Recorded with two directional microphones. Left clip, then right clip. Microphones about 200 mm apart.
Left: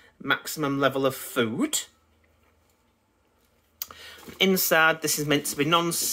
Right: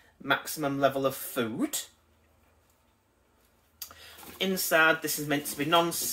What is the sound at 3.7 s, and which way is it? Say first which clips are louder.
Speech: left 5 dB; 55° left (ahead or behind).